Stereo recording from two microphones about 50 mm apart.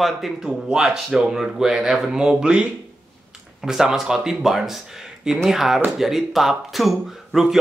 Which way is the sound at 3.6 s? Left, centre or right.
Centre.